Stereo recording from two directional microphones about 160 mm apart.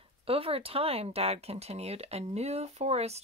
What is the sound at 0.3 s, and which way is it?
Speech, 35° right (ahead or behind).